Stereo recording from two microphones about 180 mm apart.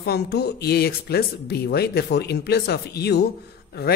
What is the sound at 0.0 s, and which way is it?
A woman's voice, 65° left (ahead or behind).